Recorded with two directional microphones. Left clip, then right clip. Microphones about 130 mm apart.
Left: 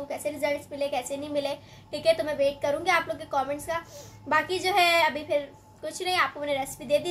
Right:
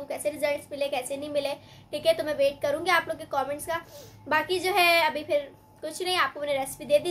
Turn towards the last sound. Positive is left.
turn(degrees=-10)  # may be behind; listen again after turning